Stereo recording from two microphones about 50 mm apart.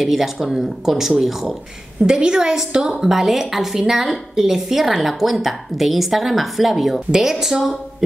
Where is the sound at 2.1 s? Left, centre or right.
Centre.